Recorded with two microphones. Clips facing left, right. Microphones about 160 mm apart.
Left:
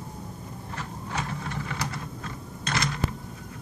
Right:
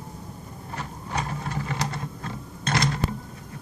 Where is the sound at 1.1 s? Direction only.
35° right (ahead or behind).